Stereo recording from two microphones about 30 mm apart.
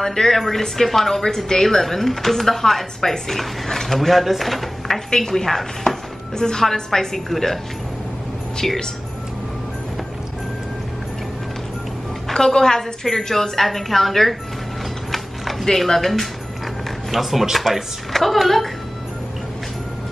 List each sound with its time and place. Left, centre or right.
0.0 s speech: centre
6.3 s a woman's voice: left
8.6 s speech: centre
12.4 s a woman's voice: left
15.0 s mechanisms: centre
15.9 s speech: centre
17.1 s a woman's voice: centre